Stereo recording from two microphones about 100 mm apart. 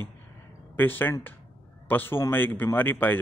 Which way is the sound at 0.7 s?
20° left (ahead or behind).